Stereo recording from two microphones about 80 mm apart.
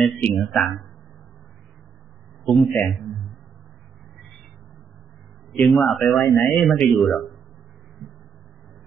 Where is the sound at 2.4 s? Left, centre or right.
Centre.